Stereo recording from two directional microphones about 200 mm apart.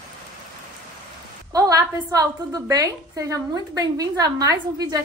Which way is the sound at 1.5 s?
20° right (ahead or behind).